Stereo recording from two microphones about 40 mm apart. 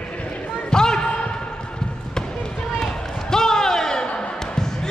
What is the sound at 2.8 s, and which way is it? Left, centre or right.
Basketball bounce, centre.